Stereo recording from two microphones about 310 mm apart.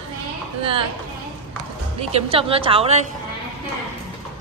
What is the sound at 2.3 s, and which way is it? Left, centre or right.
Speech, centre.